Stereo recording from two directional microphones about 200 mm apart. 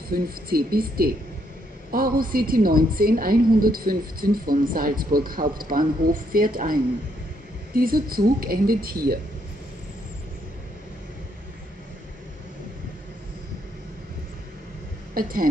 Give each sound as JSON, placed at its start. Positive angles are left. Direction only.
{"t": 0.1, "sound": "a woman's voice", "side_deg": -50}
{"t": 15.1, "sound": "a woman's voice", "side_deg": -45}